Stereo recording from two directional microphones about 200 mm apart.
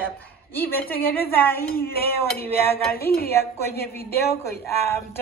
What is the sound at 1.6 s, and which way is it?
Dishes, 50° left (ahead or behind).